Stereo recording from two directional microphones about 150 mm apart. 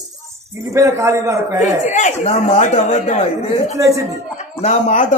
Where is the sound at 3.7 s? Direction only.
20° right (ahead or behind).